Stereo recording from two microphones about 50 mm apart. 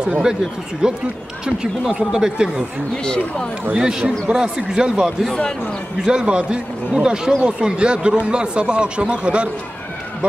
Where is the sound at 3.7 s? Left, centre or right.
Centre.